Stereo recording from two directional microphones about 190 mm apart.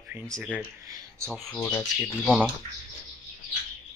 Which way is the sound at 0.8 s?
15° right (ahead or behind).